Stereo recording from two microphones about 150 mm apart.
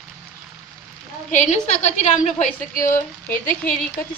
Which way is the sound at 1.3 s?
55° left (ahead or behind).